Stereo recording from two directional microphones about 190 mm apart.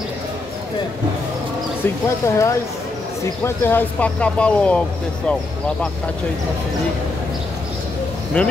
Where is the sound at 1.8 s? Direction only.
15° left (ahead or behind).